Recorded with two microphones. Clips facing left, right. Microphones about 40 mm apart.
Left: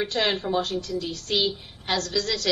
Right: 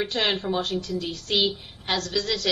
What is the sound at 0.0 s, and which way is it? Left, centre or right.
A woman's voice, centre.